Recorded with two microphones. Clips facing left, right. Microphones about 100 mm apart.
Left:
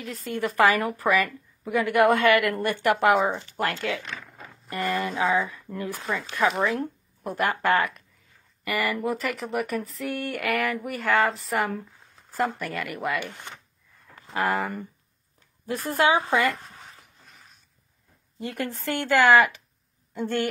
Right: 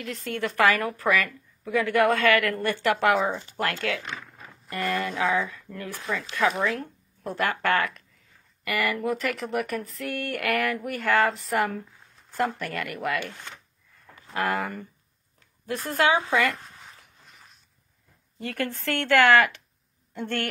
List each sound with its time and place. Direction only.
0.0 s a woman's voice: centre (ahead or behind)
5.2 s a woman's voice: 15° left (ahead or behind)
13.2 s a woman's voice: 15° left (ahead or behind)
14.3 s a woman's voice: centre (ahead or behind)
18.4 s a woman's voice: 10° left (ahead or behind)